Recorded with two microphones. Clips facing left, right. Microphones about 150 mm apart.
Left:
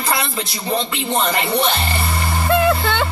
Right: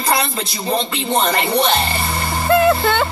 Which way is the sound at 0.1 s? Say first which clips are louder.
Right 3 dB; 20° right (ahead or behind).